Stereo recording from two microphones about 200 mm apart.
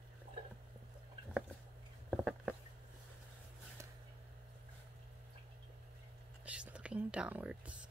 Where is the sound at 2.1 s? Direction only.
Centre (ahead or behind).